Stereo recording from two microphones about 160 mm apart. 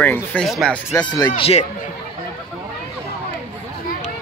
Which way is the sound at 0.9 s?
25° left (ahead or behind).